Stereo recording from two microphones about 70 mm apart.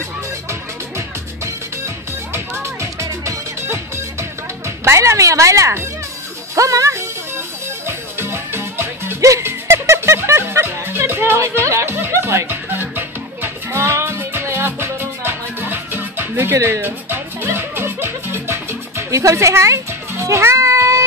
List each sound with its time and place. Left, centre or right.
0.5 s music: right
19.0 s a child's voice: right